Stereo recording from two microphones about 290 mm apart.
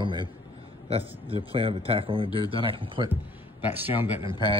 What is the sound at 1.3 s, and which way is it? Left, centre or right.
A man's voice, centre.